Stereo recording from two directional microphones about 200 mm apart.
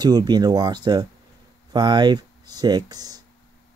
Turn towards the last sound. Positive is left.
turn(degrees=-20)  # may be behind; listen again after turning